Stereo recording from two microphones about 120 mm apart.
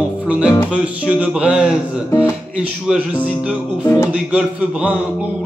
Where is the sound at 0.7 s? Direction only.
10° right (ahead or behind).